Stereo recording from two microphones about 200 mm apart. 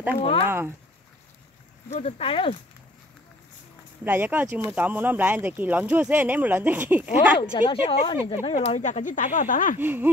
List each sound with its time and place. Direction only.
0.2 s speech: 25° left (ahead or behind)
1.9 s speech: 30° left (ahead or behind)
4.0 s speech: 10° right (ahead or behind)
7.3 s speech: 25° left (ahead or behind); by 9.8 s 40° left (ahead or behind)
9.8 s speech: 10° right (ahead or behind)